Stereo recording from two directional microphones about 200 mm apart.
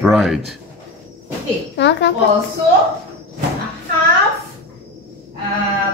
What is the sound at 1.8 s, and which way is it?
Speech, 60° left (ahead or behind).